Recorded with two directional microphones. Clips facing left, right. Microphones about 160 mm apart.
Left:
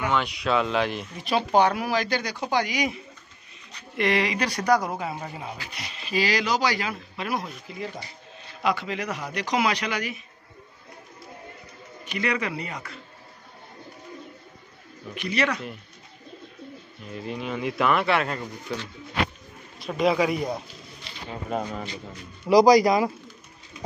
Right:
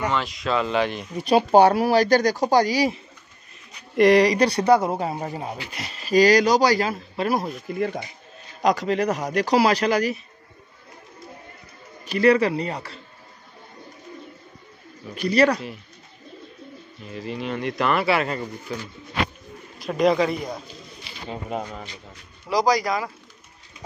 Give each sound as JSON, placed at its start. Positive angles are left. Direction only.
{"t": 0.1, "sound": "speech", "side_deg": 0}
{"t": 1.3, "sound": "speech", "side_deg": -35}
{"t": 7.6, "sound": "speech", "side_deg": -55}
{"t": 8.6, "sound": "speech", "side_deg": -40}
{"t": 12.1, "sound": "speech", "side_deg": -35}
{"t": 15.1, "sound": "speech", "side_deg": -35}
{"t": 17.0, "sound": "speech", "side_deg": 0}
{"t": 21.1, "sound": "bird", "side_deg": -5}
{"t": 22.5, "sound": "speech", "side_deg": 15}